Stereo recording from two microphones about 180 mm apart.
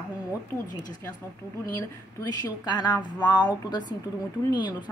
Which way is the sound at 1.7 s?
20° left (ahead or behind).